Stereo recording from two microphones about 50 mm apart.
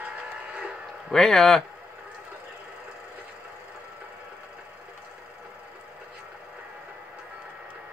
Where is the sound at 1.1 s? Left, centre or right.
Centre.